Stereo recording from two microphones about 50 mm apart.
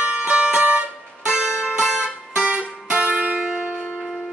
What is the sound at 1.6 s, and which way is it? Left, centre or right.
Music, centre.